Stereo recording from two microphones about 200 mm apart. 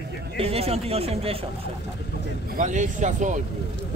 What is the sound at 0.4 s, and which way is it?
Speech, 30° right (ahead or behind).